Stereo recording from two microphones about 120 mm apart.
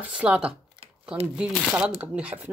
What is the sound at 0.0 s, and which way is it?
Speech, 10° right (ahead or behind).